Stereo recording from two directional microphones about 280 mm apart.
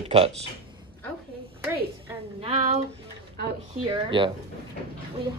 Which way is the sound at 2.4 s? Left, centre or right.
Right.